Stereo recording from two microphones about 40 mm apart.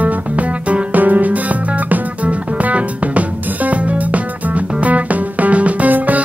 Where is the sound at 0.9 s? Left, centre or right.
Right.